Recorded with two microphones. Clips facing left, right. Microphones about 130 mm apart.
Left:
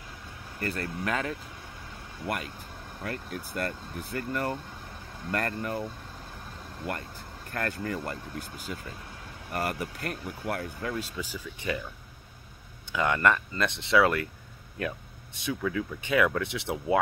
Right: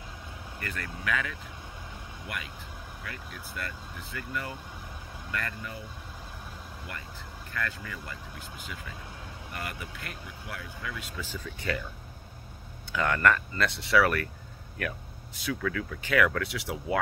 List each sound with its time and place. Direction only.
0.6 s speech: 35° left (ahead or behind); by 5.9 s 50° left (ahead or behind)
6.9 s speech: 50° left (ahead or behind)
11.1 s speech: 15° left (ahead or behind)
12.9 s speech: 20° left (ahead or behind)